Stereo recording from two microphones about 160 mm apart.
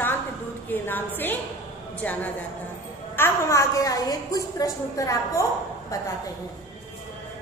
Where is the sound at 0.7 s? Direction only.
10° left (ahead or behind).